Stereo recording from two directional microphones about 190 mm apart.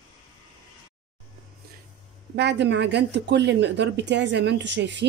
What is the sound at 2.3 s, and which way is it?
Speech, 65° right (ahead or behind).